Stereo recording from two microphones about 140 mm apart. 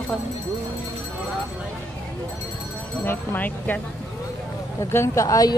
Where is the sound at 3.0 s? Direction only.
15° left (ahead or behind).